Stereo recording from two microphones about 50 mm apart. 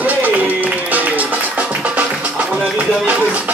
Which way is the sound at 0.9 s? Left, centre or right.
Right.